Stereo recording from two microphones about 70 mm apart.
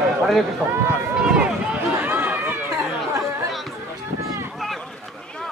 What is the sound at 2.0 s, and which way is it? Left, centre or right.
Run, right.